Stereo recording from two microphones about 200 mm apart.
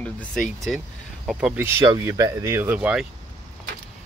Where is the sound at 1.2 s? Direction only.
5° right (ahead or behind).